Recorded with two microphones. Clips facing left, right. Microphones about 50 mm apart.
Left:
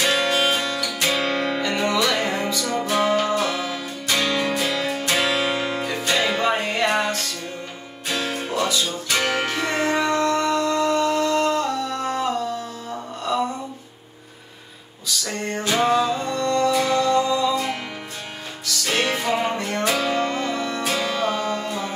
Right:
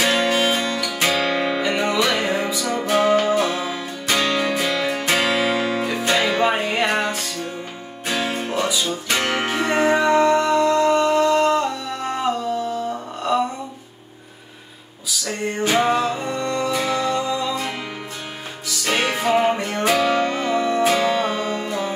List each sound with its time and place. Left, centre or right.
0.0 s music: centre
5.3 s music: centre
5.8 s music: centre
13.3 s a sound: centre
15.0 s music: centre
20.1 s music: right
20.3 s music: right